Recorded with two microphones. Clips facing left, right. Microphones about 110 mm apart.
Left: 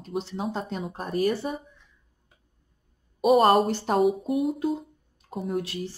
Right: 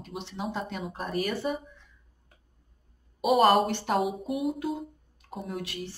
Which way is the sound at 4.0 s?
Centre (ahead or behind).